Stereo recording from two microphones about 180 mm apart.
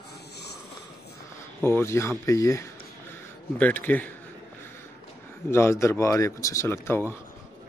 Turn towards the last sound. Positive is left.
turn(degrees=10)  # may be behind; listen again after turning